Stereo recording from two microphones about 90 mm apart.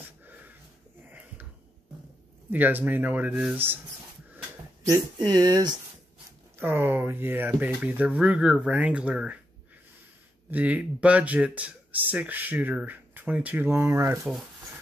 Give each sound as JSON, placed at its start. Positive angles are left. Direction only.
{"t": 0.2, "sound": "wheeze", "side_deg": -20}
{"t": 2.5, "sound": "speech", "side_deg": -20}
{"t": 5.1, "sound": "speech", "side_deg": -50}
{"t": 6.6, "sound": "speech", "side_deg": -20}
{"t": 10.5, "sound": "speech", "side_deg": -15}